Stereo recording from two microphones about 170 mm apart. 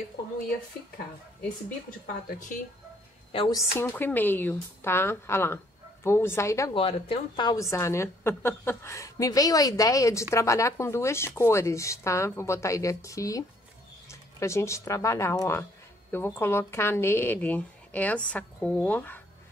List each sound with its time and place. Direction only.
2.2 s speech: 50° left (ahead or behind)
3.3 s a woman's voice: 30° left (ahead or behind)
3.5 s speech: 15° left (ahead or behind)
6.7 s a woman's voice: 30° left (ahead or behind); by 19.2 s 10° left (ahead or behind)